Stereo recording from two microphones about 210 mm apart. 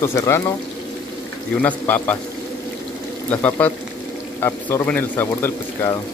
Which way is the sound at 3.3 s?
5° left (ahead or behind).